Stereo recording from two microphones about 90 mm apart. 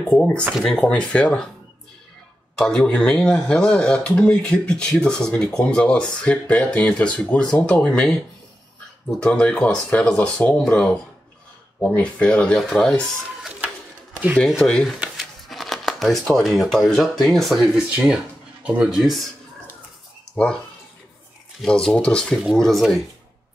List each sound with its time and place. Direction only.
0.1 s speech: 10° left (ahead or behind)
2.5 s speech: 10° left (ahead or behind)
9.2 s speech: 10° left (ahead or behind)
14.1 s a sound: 15° right (ahead or behind)
15.1 s speech: centre (ahead or behind)
21.6 s speech: 10° left (ahead or behind)